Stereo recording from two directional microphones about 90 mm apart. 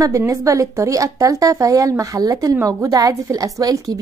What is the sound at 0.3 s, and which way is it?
A woman's voice, 35° right (ahead or behind).